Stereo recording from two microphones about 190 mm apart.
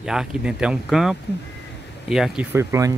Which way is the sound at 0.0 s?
5° right (ahead or behind).